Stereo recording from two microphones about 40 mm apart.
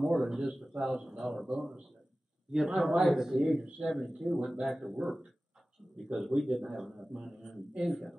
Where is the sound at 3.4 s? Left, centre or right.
Centre.